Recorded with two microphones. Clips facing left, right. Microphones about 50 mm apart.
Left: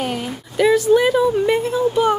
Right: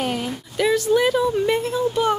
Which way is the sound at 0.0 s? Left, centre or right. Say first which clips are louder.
Left 1 dB; centre.